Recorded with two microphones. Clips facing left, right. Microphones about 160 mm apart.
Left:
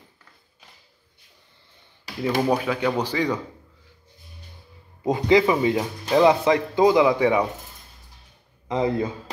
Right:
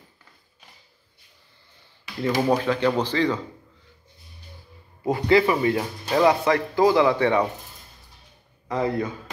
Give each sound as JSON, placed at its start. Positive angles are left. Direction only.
{"t": 2.5, "sound": "speech", "side_deg": 10}
{"t": 5.0, "sound": "speech", "side_deg": 20}
{"t": 8.6, "sound": "speech", "side_deg": 20}